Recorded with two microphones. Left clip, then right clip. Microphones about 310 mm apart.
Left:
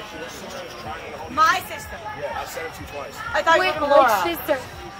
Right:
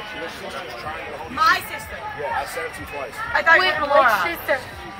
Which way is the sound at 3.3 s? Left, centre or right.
Centre.